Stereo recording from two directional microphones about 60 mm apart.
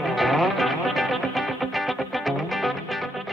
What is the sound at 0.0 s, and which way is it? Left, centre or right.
Music, centre.